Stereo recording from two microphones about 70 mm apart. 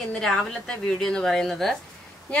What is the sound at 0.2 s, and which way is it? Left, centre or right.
Speech, centre.